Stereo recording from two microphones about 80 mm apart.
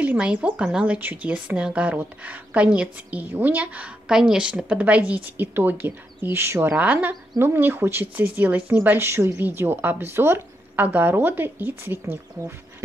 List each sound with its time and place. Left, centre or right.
0.0 s speech: centre